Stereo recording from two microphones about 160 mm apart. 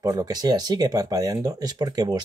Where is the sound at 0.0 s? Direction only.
20° right (ahead or behind).